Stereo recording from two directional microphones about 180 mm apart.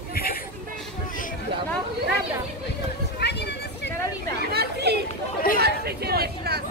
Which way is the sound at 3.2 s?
65° left (ahead or behind).